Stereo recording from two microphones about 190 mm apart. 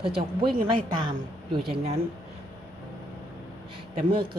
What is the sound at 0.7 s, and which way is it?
Speech, 25° right (ahead or behind).